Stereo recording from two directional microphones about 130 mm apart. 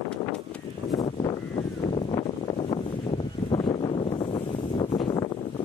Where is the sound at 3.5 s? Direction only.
35° left (ahead or behind).